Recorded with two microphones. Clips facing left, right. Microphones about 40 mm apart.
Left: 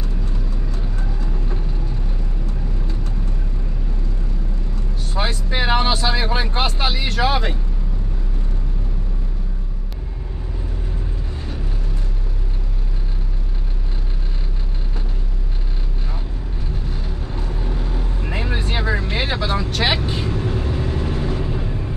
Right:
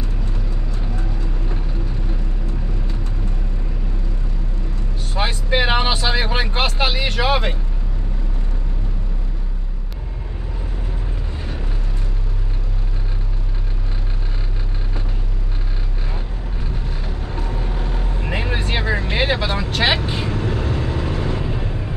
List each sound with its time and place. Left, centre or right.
5.1 s vehicle: right
5.9 s speech: centre
17.3 s vehicle: centre